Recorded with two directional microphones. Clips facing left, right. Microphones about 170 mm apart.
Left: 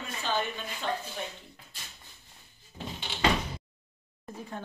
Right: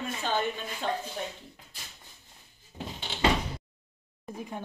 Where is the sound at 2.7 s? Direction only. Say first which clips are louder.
Right 1 dB; 20° right (ahead or behind).